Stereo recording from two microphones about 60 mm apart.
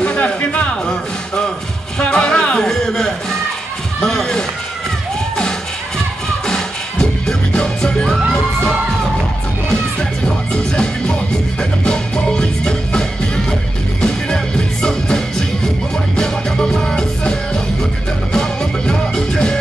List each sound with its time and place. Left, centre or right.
0.0 s a sound: left
0.8 s speech: centre
2.0 s music: centre
6.4 s music: centre
9.9 s music: centre
14.0 s music: centre